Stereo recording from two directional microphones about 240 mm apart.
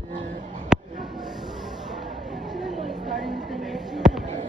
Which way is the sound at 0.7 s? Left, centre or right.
Centre.